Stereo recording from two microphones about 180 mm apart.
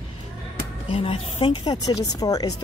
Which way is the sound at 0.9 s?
30° left (ahead or behind).